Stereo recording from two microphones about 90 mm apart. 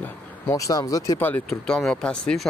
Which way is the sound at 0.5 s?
35° left (ahead or behind).